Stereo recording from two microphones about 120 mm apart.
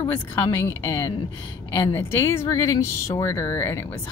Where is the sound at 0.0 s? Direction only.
20° left (ahead or behind).